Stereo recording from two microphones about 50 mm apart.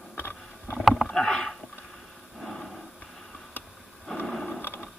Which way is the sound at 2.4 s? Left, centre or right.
Centre.